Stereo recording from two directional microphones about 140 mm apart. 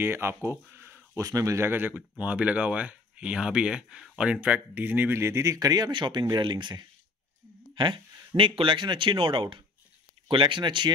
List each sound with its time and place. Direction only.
0.0 s speech: 15° right (ahead or behind); by 10.9 s 35° right (ahead or behind)